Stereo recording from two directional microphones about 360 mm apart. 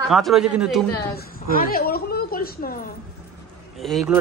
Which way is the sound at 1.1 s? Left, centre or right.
Left.